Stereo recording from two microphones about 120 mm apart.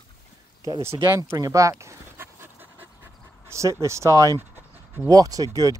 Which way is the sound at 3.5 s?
25° right (ahead or behind).